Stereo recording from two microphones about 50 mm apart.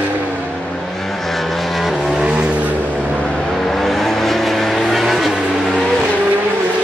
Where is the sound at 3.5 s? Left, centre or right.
Centre.